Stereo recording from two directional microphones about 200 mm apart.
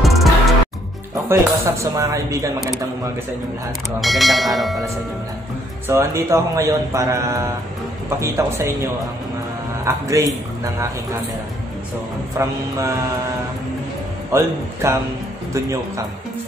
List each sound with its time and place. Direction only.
0.0 s music: centre (ahead or behind)
1.3 s speech: 15° right (ahead or behind)
4.0 s speech: centre (ahead or behind)
5.9 s speech: 15° right (ahead or behind)
9.8 s speech: 15° right (ahead or behind)
12.4 s speech: 15° right (ahead or behind)
14.3 s speech: 15° right (ahead or behind)